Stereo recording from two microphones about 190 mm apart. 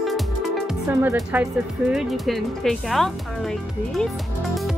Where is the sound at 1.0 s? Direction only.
10° right (ahead or behind).